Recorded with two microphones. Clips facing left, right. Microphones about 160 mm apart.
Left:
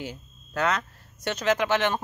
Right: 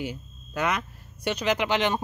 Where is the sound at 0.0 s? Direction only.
10° right (ahead or behind).